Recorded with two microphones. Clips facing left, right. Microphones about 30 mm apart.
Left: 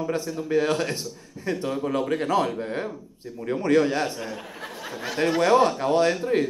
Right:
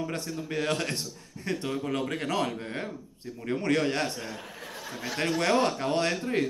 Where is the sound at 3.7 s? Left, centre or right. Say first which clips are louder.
Left 7 dB; centre.